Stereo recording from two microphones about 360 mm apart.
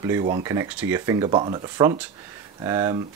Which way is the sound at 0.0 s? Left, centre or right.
Centre.